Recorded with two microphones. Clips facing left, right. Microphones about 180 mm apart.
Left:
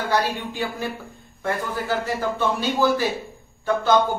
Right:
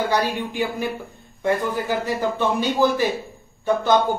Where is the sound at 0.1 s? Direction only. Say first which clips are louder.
Right 1 dB; 20° right (ahead or behind).